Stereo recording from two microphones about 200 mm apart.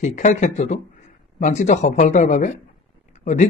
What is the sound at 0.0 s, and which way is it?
Speech, 35° left (ahead or behind).